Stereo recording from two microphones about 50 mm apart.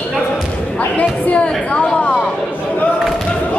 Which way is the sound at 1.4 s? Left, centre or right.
Centre.